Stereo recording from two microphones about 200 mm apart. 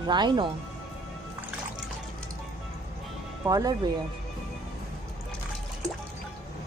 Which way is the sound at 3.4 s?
20° right (ahead or behind).